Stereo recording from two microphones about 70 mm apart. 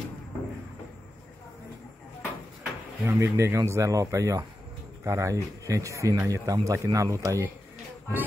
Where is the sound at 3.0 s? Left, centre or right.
Right.